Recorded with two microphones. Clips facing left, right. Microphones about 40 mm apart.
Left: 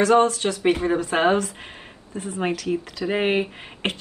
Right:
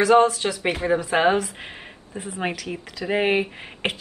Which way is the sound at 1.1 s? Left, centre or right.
Centre.